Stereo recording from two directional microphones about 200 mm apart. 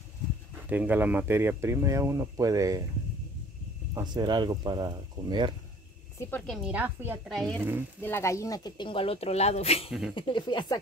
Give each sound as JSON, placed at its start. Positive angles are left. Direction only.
{"t": 0.7, "sound": "speech", "side_deg": -10}
{"t": 3.9, "sound": "speech", "side_deg": -20}
{"t": 6.1, "sound": "speech", "side_deg": 5}
{"t": 7.2, "sound": "speech", "side_deg": 5}
{"t": 9.8, "sound": "speech", "side_deg": 0}
{"t": 10.1, "sound": "speech", "side_deg": 25}